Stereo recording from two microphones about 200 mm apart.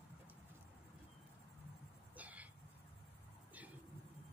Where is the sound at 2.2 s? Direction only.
5° right (ahead or behind).